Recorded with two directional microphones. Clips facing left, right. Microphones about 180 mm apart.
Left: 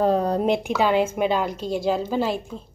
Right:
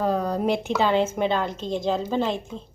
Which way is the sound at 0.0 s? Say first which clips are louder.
Left 3 dB; 30° left (ahead or behind).